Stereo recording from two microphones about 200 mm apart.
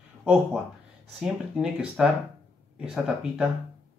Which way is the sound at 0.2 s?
5° right (ahead or behind).